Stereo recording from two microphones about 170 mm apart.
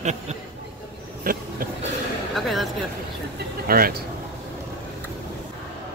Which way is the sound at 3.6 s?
60° right (ahead or behind).